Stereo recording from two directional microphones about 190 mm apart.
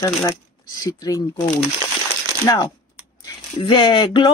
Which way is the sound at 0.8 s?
20° left (ahead or behind).